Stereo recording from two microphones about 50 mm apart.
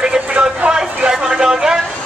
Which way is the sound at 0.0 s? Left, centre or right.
Centre.